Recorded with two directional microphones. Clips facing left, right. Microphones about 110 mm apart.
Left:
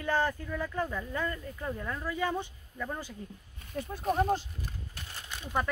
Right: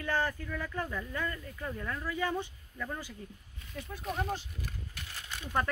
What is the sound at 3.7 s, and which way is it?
Speech, 40° left (ahead or behind).